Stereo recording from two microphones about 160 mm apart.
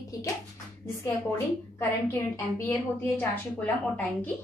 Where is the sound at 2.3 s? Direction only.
15° left (ahead or behind).